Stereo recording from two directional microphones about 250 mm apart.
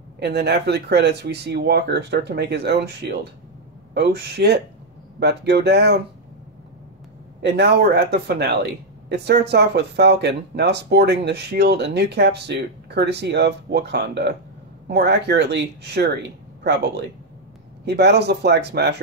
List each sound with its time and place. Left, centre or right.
0.2 s speech: right
7.4 s speech: right